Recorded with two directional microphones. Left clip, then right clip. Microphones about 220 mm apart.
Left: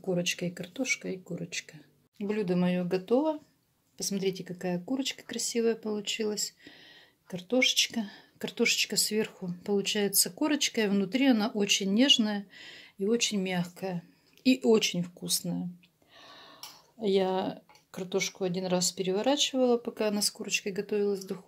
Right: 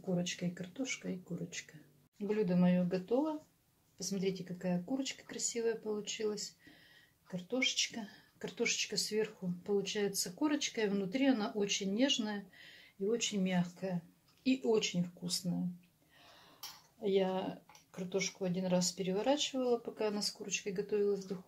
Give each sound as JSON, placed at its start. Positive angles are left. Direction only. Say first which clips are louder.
{"t": 0.1, "sound": "speech", "louder": "left 8 dB", "side_deg": 45}
{"t": 17.0, "sound": "speech", "louder": "left 6 dB", "side_deg": 45}